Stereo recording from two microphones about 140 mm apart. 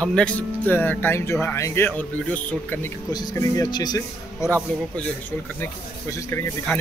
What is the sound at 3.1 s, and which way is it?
Speech, 25° left (ahead or behind).